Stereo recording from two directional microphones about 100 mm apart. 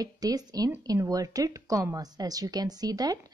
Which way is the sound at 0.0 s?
40° right (ahead or behind).